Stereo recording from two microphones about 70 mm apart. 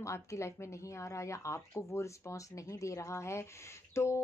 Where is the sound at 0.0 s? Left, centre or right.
Left.